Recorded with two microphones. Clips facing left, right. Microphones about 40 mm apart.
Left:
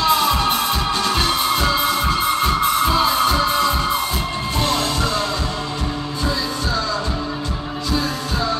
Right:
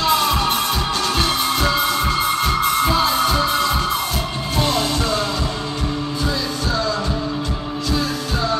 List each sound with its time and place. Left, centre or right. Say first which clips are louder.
0.1 s music: left 1 dB; centre